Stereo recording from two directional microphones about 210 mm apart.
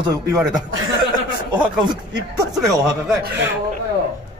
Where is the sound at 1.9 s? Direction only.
20° right (ahead or behind).